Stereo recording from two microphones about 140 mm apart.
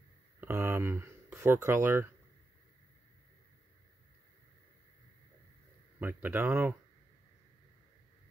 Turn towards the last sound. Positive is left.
turn(degrees=-15)  # may be behind; listen again after turning